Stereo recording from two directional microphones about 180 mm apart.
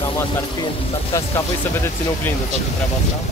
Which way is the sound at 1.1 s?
15° left (ahead or behind).